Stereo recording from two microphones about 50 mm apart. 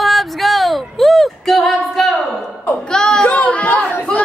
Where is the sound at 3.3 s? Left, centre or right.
Left.